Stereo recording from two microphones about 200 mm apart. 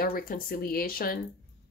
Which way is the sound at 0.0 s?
45° left (ahead or behind).